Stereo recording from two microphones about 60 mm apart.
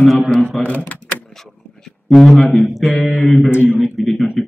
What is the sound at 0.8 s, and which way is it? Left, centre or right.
Typing, left.